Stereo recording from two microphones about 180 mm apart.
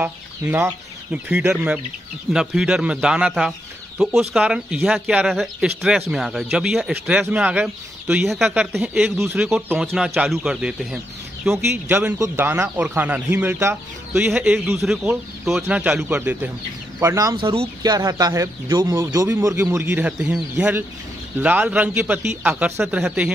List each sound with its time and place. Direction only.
0.0 s speech: 10° right (ahead or behind)